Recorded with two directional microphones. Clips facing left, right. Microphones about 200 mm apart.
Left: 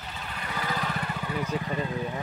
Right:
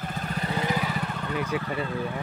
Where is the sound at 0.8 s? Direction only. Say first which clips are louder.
Right 2 dB; centre (ahead or behind); by 2.2 s 15° left (ahead or behind).